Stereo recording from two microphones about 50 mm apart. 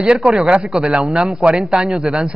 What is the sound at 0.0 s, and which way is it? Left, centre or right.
A man's voice, centre.